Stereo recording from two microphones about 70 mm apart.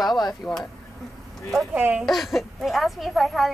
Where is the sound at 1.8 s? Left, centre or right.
Right.